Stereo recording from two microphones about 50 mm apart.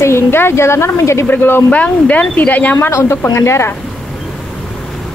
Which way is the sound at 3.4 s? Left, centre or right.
Left.